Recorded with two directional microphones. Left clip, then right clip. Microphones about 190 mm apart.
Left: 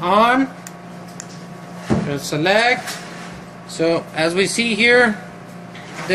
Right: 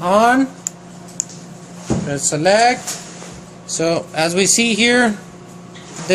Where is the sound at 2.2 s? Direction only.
55° right (ahead or behind).